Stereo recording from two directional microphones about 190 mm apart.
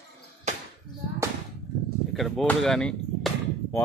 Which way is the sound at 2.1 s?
Centre (ahead or behind).